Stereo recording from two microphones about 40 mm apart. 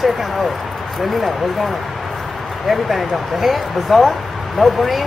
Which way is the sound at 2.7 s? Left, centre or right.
Centre.